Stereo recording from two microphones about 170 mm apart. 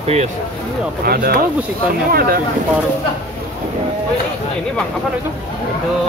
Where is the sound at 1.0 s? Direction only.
70° right (ahead or behind).